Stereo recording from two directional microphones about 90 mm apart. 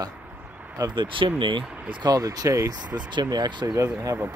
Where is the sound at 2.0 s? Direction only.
40° right (ahead or behind).